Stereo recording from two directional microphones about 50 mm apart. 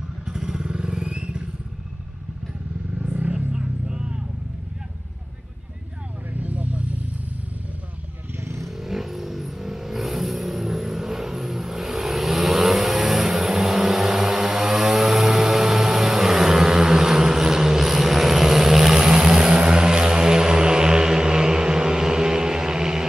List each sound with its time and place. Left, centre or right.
0.2 s motorcycle: centre
3.0 s vehicle: right
3.5 s music: centre
6.3 s vehicle: right
8.4 s vehicle: right
8.6 s vehicle: centre